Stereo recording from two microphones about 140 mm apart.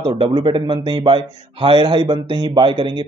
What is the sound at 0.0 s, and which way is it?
Speech, 30° right (ahead or behind).